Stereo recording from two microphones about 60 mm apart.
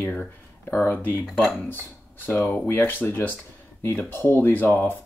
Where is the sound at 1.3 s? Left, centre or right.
Centre.